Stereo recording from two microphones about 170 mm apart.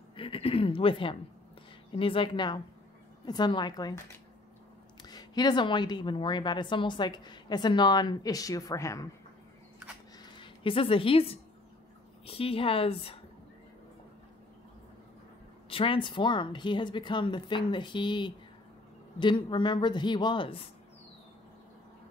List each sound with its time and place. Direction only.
0.1 s a woman's voice: 35° left (ahead or behind)
5.0 s a woman's voice: 25° left (ahead or behind)
10.3 s a woman's voice: 30° left (ahead or behind)
15.7 s a woman's voice: 30° left (ahead or behind)